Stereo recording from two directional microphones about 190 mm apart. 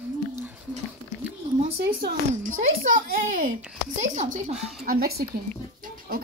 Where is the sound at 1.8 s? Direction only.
55° right (ahead or behind).